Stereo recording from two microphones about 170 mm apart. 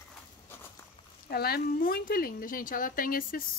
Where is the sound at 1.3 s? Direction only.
65° left (ahead or behind).